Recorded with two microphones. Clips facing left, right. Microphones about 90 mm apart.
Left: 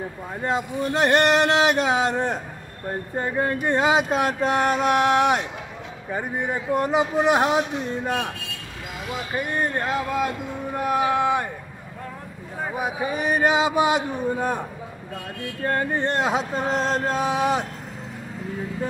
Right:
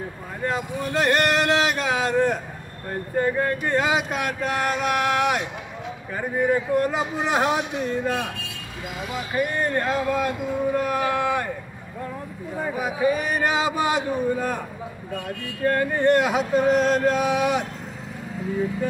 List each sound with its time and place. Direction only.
0.4 s speech: 25° left (ahead or behind)
9.3 s speech: 20° left (ahead or behind)
10.8 s a sound: 20° left (ahead or behind)
12.7 s speech: 20° left (ahead or behind)
15.6 s speech: 25° left (ahead or behind)